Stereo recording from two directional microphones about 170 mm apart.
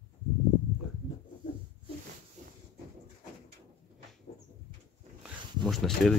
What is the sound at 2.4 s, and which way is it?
Vehicle, 45° right (ahead or behind).